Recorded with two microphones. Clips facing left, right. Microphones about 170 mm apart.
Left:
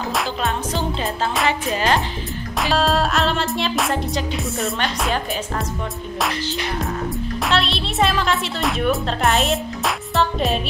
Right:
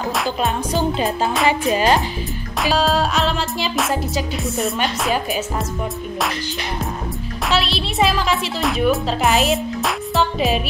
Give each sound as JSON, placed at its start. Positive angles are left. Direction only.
{"t": 0.4, "sound": "music", "side_deg": -20}
{"t": 2.6, "sound": "music", "side_deg": 0}
{"t": 7.4, "sound": "a woman's voice", "side_deg": 0}